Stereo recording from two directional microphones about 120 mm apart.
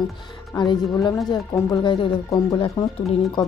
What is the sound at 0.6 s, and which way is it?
Speech, 40° left (ahead or behind).